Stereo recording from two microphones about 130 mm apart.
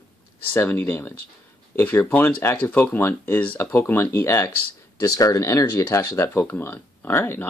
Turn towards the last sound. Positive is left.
turn(degrees=15)  # may be behind; listen again after turning